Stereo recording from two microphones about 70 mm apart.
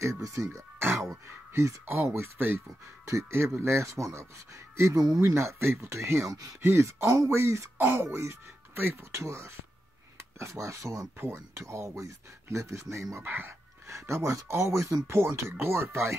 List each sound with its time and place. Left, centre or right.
0.0 s speech: right
2.1 s speech: right
4.9 s speech: right
5.3 s speech: right
7.7 s speech: right
13.2 s speech: right
13.8 s speech: right